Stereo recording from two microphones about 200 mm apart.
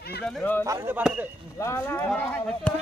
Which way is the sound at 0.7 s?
10° right (ahead or behind).